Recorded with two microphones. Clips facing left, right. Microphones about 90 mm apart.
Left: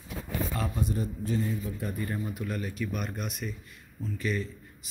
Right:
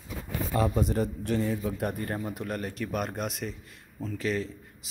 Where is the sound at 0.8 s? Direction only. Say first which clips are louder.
Right 3 dB; 70° right (ahead or behind).